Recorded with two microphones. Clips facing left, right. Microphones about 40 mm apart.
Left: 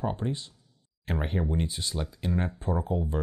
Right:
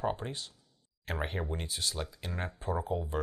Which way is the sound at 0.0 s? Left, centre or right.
Centre.